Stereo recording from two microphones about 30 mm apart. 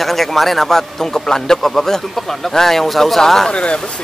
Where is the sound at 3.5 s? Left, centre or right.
Left.